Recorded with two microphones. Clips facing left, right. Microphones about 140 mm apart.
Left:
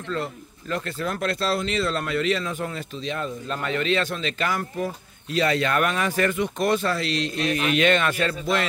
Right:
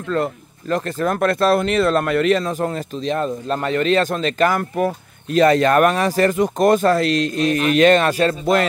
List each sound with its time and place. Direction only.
0.1 s speech: 50° right (ahead or behind)
2.4 s speech: 40° right (ahead or behind); by 5.4 s 60° right (ahead or behind)
5.4 s speech: 45° right (ahead or behind)